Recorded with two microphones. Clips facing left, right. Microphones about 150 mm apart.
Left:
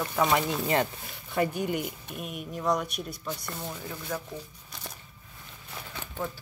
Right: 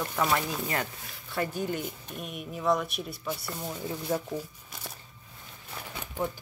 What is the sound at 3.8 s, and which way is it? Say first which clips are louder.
Speech: right 7 dB; 30° right (ahead or behind).